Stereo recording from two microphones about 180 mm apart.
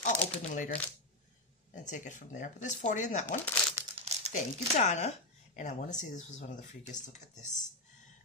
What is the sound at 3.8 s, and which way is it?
Crumpling, 15° right (ahead or behind).